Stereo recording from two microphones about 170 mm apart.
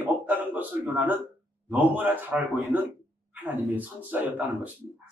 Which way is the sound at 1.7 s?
5° right (ahead or behind).